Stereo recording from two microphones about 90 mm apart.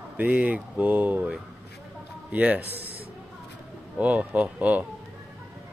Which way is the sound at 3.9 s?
15° right (ahead or behind).